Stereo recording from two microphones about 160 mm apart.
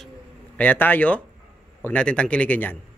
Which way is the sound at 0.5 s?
10° left (ahead or behind).